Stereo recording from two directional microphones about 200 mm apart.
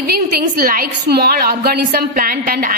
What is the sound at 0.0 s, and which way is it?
A woman's voice, 50° right (ahead or behind).